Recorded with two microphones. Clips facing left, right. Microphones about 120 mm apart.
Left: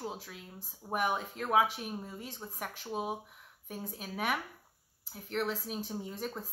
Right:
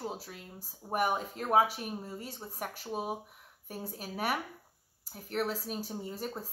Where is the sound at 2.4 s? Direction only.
25° right (ahead or behind).